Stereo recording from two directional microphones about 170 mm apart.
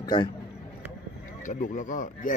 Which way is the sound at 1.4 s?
50° left (ahead or behind).